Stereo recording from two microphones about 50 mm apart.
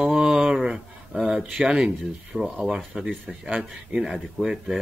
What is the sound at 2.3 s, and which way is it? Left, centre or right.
Speech, centre.